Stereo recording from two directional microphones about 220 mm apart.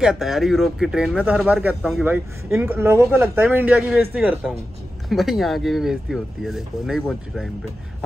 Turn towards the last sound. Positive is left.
turn(degrees=0)  # may be behind; listen again after turning